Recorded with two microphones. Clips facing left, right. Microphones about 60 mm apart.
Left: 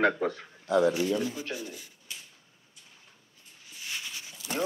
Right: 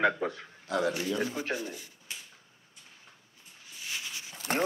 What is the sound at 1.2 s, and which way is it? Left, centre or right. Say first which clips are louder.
Speech: right 1 dB; right.